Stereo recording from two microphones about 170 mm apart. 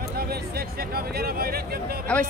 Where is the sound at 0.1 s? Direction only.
65° right (ahead or behind).